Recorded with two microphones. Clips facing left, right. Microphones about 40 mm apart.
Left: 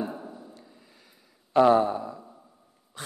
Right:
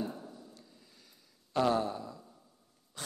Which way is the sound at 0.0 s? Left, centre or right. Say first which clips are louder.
Left 5 dB; left.